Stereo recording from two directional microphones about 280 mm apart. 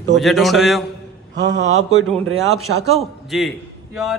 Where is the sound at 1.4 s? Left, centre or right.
Right.